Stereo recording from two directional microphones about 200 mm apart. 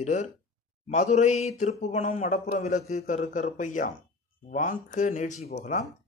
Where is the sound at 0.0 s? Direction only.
35° left (ahead or behind).